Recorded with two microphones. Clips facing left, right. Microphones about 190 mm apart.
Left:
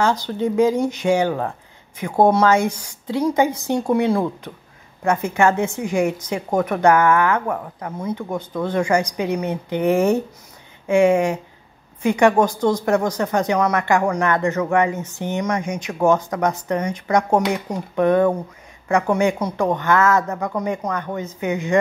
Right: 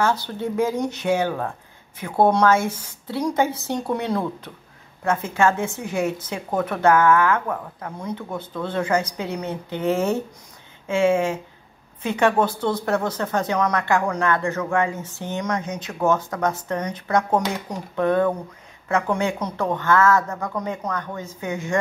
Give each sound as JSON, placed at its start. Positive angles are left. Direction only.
{"t": 0.0, "sound": "speech", "side_deg": 15}